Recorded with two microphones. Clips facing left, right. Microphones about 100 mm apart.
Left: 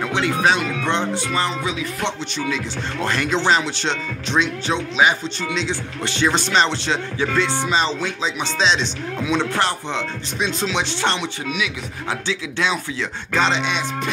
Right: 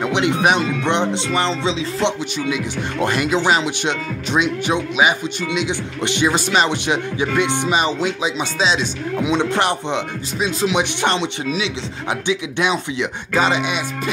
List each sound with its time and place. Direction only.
0.0 s speech: 20° right (ahead or behind)
2.3 s speech: 15° right (ahead or behind)
9.2 s speech: 20° right (ahead or behind)
12.3 s speech: 15° right (ahead or behind)